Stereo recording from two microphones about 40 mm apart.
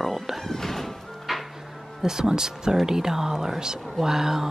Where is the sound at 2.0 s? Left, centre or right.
Centre.